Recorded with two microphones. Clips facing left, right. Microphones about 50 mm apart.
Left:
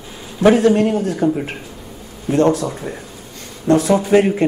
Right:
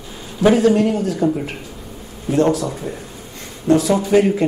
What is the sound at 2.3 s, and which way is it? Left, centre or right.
Speech, left.